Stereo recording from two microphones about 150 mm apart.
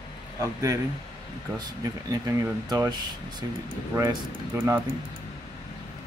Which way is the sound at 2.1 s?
20° right (ahead or behind).